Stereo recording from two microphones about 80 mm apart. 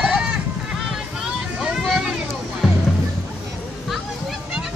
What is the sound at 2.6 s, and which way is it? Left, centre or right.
Music, centre.